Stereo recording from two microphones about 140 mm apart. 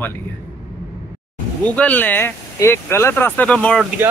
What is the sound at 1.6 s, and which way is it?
Speech, 10° left (ahead or behind).